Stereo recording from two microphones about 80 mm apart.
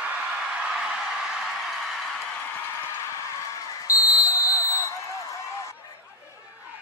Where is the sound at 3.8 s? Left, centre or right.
Left.